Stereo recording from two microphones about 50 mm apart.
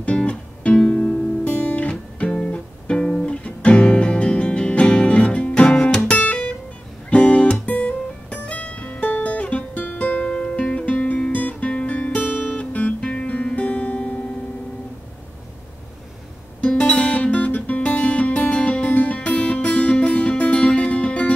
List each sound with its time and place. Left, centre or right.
0.0 s music: left
1.4 s guitar: left
2.3 s music: left
11.3 s guitar: left
16.6 s music: left